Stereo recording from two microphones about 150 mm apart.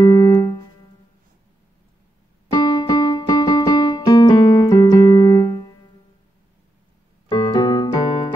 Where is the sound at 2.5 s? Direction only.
25° left (ahead or behind).